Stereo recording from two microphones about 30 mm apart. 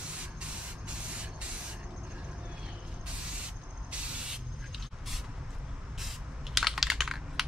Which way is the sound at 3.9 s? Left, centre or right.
Right.